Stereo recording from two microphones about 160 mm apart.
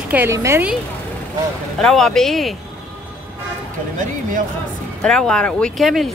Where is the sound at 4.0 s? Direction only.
55° right (ahead or behind).